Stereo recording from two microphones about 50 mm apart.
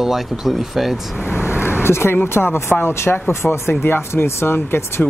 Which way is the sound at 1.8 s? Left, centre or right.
Left.